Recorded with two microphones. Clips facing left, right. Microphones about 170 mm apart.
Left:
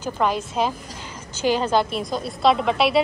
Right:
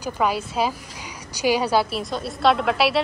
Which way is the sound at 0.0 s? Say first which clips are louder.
Even; 5° right (ahead or behind).